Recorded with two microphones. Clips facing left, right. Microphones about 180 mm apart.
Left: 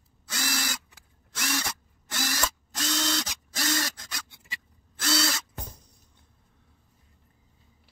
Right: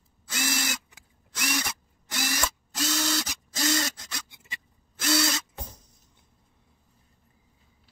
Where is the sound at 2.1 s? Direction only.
15° right (ahead or behind).